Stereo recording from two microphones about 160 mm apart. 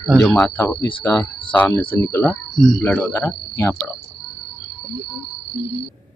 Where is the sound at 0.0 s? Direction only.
Centre (ahead or behind).